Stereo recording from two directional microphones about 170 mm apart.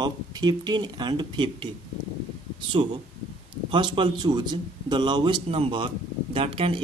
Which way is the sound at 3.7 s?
30° right (ahead or behind).